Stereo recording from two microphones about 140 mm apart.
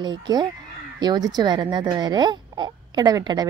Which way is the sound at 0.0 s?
30° right (ahead or behind).